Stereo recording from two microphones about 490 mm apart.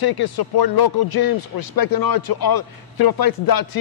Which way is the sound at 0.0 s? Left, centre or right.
Left.